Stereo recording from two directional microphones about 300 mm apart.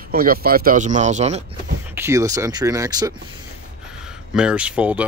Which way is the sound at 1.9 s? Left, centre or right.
Centre.